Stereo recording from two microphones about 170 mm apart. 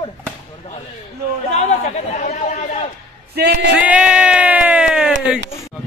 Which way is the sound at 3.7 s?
5° right (ahead or behind).